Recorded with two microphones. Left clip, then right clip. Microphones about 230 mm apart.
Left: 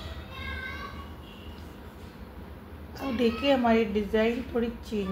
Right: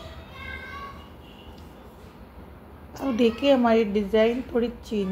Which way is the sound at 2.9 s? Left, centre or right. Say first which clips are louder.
Right 4 dB; right.